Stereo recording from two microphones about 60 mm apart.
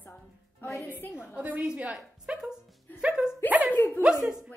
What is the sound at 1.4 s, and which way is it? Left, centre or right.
A woman's voice, right.